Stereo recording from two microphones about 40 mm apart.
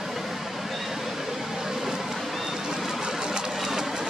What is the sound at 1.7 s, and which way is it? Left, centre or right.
Vehicle, centre.